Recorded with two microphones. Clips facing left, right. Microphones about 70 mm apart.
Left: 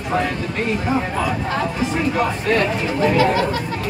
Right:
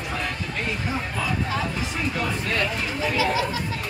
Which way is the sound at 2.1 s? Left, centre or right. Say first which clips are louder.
Left 7 dB; left.